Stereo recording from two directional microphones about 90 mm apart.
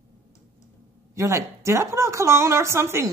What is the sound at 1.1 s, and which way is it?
A woman's voice, 35° right (ahead or behind).